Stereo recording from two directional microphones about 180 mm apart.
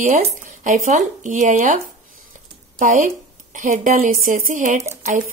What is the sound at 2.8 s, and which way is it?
A woman's voice, 45° right (ahead or behind).